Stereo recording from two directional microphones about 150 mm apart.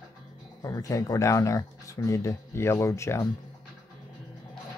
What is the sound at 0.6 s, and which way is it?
Speech, 20° left (ahead or behind).